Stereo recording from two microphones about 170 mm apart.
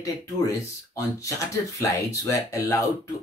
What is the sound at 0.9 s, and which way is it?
Speech, 20° left (ahead or behind).